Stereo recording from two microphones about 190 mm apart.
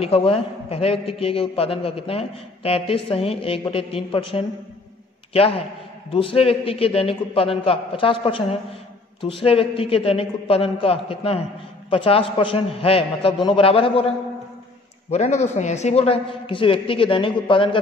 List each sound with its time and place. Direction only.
0.0 s a man's voice: 30° left (ahead or behind)